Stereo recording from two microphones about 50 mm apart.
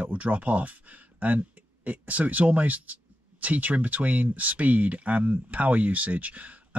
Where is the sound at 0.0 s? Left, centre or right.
Right.